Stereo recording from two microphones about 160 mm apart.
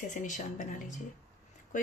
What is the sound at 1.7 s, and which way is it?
Speech, 55° left (ahead or behind).